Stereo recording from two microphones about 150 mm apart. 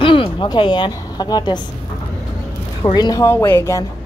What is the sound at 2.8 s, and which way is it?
Speech, 30° left (ahead or behind).